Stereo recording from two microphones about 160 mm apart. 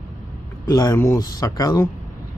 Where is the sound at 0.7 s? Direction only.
25° left (ahead or behind).